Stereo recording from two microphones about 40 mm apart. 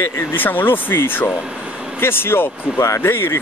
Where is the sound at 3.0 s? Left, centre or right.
Left.